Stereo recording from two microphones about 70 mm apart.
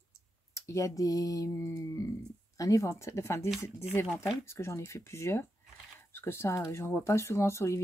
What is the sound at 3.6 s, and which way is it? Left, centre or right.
Speech, left.